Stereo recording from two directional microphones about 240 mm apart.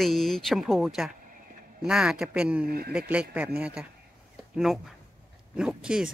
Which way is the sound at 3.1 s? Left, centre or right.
Centre.